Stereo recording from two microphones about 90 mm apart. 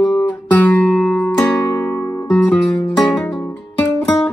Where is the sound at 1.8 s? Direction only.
30° left (ahead or behind).